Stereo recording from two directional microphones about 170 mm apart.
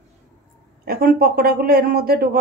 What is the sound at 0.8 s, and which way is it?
Speech, 60° right (ahead or behind).